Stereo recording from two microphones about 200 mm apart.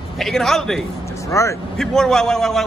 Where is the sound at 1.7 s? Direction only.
5° left (ahead or behind).